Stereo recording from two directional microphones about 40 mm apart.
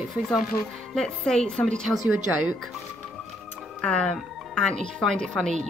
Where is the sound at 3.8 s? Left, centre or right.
Left.